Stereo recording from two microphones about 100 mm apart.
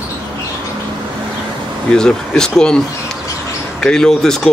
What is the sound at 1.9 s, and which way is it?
Speech, 5° left (ahead or behind).